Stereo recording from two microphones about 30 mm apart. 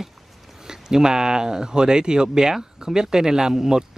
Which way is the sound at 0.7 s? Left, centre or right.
Right.